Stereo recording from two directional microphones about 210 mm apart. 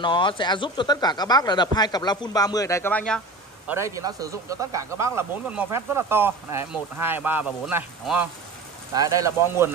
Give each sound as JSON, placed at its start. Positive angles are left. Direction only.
{"t": 0.0, "sound": "speech", "side_deg": 20}
{"t": 3.6, "sound": "speech", "side_deg": -10}